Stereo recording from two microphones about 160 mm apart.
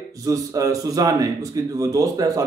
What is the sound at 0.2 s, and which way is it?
Speech, 20° right (ahead or behind).